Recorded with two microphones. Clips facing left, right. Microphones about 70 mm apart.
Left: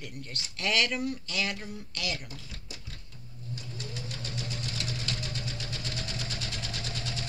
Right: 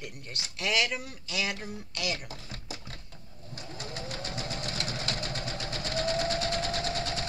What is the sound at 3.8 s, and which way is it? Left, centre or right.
Vehicle, right.